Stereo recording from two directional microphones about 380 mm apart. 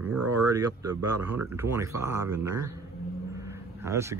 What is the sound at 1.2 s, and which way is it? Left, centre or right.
Speech, centre.